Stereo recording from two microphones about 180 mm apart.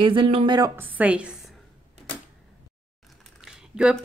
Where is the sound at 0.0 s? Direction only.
30° right (ahead or behind).